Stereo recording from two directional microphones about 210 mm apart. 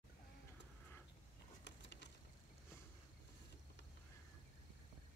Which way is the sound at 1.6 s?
55° left (ahead or behind).